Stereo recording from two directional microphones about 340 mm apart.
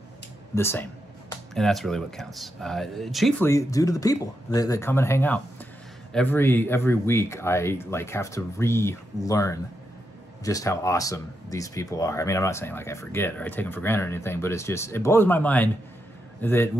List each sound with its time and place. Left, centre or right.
0.6 s a man's voice: centre